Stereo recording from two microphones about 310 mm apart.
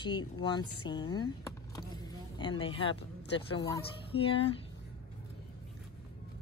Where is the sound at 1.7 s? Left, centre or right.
Centre.